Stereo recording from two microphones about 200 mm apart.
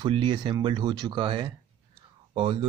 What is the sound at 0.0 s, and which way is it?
Speech, 25° right (ahead or behind).